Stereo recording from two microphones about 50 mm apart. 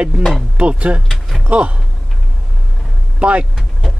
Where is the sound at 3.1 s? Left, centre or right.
Right.